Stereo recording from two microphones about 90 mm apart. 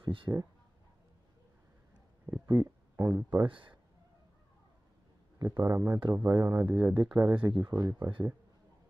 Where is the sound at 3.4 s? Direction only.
65° right (ahead or behind).